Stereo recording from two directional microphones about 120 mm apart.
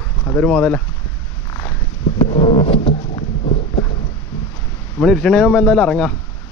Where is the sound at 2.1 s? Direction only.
50° left (ahead or behind).